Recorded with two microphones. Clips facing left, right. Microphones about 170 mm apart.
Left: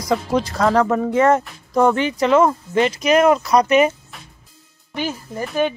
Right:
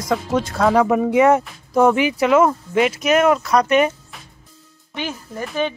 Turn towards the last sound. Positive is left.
turn(degrees=5)  # may be behind; listen again after turning